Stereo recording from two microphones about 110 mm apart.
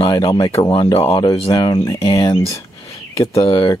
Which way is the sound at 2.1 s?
40° left (ahead or behind).